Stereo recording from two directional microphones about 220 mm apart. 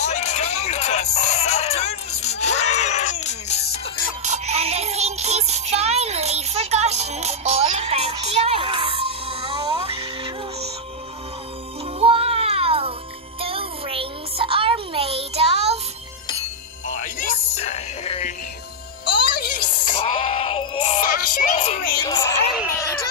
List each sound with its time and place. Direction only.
0.0 s a sound: 30° left (ahead or behind)
4.2 s music: 30° right (ahead or behind)
12.0 s music: 25° right (ahead or behind)
16.8 s music: 35° left (ahead or behind)
19.7 s music: 20° left (ahead or behind)
22.0 s a sound: 15° left (ahead or behind)